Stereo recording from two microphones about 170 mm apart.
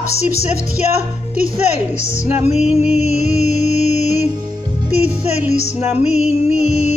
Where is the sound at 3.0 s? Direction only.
40° left (ahead or behind).